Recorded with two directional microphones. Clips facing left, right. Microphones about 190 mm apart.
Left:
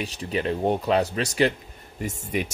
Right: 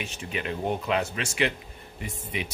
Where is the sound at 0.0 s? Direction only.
35° left (ahead or behind).